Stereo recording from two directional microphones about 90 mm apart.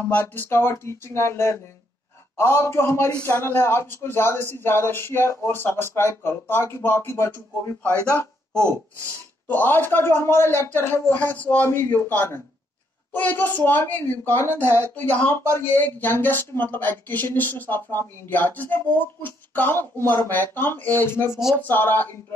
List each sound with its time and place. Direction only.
0.1 s speech: 25° left (ahead or behind)
8.5 s speech: 30° right (ahead or behind)
9.5 s speech: 20° left (ahead or behind)